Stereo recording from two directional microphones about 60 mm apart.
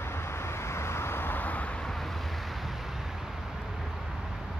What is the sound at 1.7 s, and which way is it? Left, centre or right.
Vehicle, centre.